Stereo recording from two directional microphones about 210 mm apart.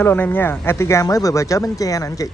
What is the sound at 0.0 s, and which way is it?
Speech, 10° left (ahead or behind).